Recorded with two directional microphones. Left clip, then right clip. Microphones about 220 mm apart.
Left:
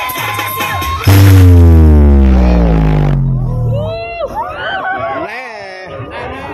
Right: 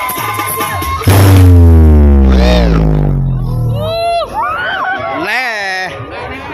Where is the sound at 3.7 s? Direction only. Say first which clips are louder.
Right 6 dB; 50° right (ahead or behind).